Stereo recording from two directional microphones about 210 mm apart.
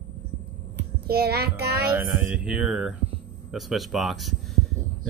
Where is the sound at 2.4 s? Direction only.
Centre (ahead or behind).